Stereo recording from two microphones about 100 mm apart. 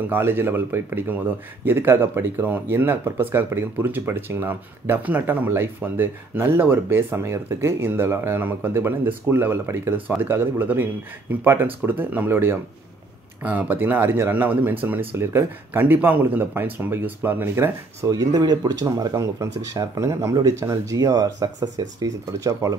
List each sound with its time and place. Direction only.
0.1 s speech: 20° right (ahead or behind)
18.0 s speech: 35° right (ahead or behind)